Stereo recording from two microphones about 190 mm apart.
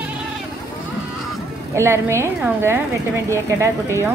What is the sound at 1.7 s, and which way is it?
Speech, 15° right (ahead or behind).